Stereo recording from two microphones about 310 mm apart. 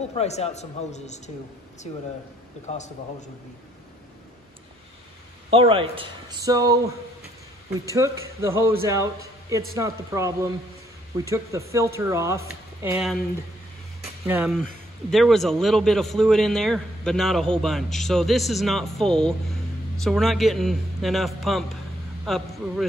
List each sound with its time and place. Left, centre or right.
0.1 s a man's voice: centre
5.5 s speech: centre
7.8 s a man's voice: centre
14.2 s a man's voice: centre